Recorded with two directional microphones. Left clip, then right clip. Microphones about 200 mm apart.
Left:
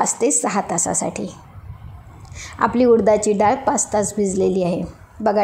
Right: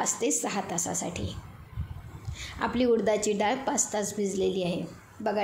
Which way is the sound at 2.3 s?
30° left (ahead or behind).